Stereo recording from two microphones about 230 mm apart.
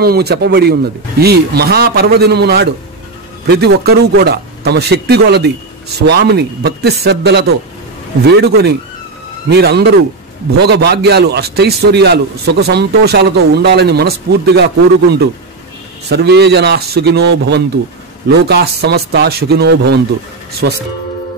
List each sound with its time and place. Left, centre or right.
0.0 s a man's voice: right